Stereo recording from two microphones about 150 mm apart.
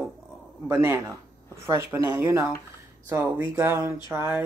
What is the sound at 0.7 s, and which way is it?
Speech, 20° right (ahead or behind).